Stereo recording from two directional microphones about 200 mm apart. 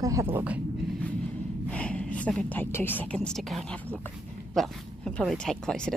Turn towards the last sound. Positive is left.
turn(degrees=5)  # may be behind; listen again after turning